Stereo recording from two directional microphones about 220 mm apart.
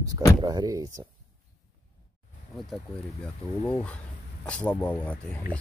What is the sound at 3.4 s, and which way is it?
Speech, 20° left (ahead or behind).